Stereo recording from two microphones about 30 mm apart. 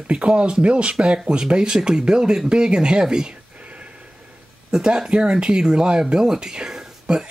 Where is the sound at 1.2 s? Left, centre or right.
Right.